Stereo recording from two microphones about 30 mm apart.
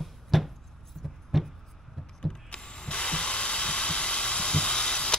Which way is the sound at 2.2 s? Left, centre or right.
Left.